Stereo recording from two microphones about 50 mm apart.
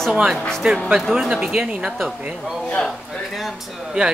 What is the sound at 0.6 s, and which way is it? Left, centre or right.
Speech, right.